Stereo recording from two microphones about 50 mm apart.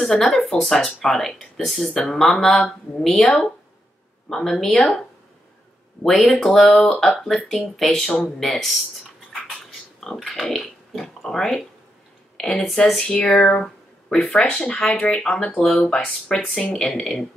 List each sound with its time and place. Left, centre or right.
0.0 s speech: centre
6.0 s speech: centre
9.9 s speech: centre
13.0 s a sound: left
13.4 s speech: centre
15.5 s speech: centre